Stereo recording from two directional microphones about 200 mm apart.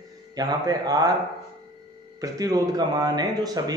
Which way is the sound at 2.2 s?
15° right (ahead or behind).